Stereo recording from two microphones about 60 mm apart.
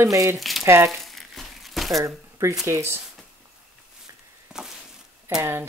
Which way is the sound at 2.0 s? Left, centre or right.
Right.